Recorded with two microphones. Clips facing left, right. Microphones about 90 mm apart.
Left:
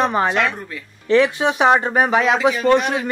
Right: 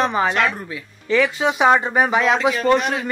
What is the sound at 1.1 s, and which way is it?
Speech, 25° left (ahead or behind).